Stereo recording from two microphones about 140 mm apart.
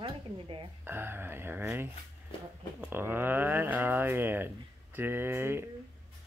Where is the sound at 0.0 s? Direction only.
40° right (ahead or behind).